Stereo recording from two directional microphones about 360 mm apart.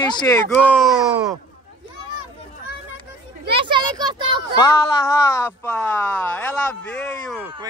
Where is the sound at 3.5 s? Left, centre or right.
Centre.